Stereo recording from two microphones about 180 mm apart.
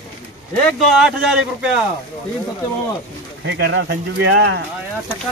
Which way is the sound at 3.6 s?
80° right.